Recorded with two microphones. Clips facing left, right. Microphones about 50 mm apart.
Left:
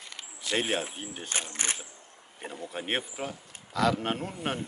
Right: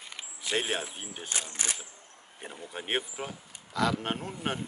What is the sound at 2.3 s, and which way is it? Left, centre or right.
Speech, centre.